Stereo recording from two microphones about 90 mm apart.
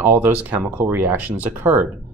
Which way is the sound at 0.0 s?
15° right (ahead or behind).